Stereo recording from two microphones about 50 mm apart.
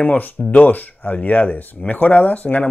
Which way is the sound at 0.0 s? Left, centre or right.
Left.